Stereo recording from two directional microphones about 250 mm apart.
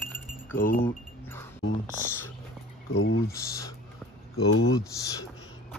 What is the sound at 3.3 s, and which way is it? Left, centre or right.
Speech, centre.